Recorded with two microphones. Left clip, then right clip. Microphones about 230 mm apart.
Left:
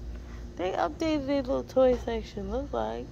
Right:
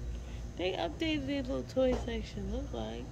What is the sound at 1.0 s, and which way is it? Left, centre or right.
Speech, centre.